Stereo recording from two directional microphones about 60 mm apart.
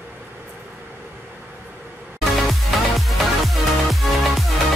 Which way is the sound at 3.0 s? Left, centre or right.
Centre.